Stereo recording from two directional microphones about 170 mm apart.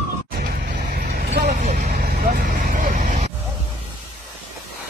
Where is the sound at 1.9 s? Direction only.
65° right (ahead or behind); by 3.3 s 50° right (ahead or behind).